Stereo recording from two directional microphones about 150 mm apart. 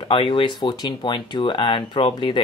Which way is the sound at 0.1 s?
35° left (ahead or behind).